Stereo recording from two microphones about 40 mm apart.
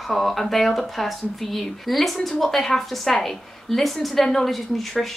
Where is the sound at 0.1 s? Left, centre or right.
Centre.